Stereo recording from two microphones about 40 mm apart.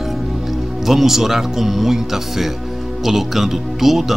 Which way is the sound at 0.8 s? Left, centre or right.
Centre.